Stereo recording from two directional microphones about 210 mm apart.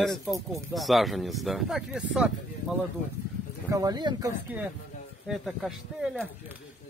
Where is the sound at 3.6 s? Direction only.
15° right (ahead or behind).